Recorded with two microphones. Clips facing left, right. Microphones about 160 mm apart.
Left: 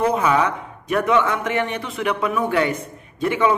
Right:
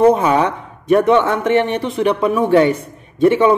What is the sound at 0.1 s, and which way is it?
Speech, 25° right (ahead or behind).